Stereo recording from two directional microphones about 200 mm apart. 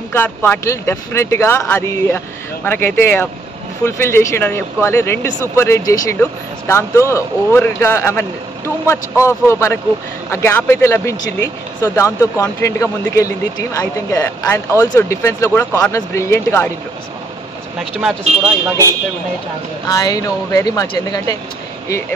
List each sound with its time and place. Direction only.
0.1 s speech: 10° left (ahead or behind)
18.4 s speech: 15° right (ahead or behind)
19.9 s speech: 20° left (ahead or behind)